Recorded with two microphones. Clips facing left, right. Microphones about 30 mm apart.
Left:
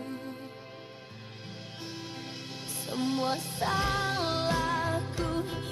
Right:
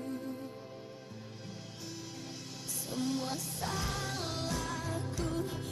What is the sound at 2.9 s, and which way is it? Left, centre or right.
Music, left.